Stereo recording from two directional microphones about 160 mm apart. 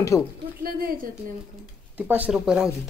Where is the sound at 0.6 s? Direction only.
70° right (ahead or behind).